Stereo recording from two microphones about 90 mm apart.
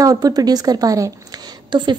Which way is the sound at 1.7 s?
60° right (ahead or behind).